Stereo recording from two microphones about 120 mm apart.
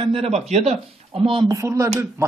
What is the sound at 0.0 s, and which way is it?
A man's voice, 50° right (ahead or behind).